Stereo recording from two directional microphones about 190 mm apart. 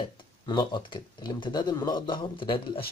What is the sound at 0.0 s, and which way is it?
Speech, 25° left (ahead or behind).